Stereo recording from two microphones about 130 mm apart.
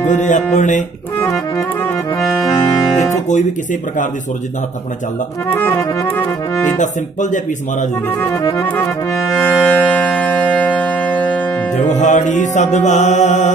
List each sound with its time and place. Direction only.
0.0 s music: 70° left (ahead or behind)
5.6 s accordion: 15° left (ahead or behind)
8.2 s accordion: 20° left (ahead or behind)
9.5 s music: 10° left (ahead or behind)
11.7 s music: 65° left (ahead or behind)